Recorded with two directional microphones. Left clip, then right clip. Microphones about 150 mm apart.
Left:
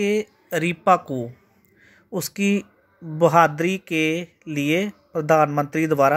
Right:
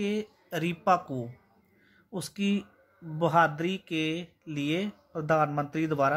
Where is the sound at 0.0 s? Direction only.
30° left (ahead or behind).